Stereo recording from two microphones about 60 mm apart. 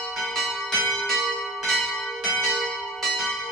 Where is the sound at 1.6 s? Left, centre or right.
Centre.